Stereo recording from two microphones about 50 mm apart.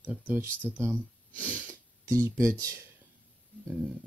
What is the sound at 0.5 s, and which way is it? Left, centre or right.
Speech, left.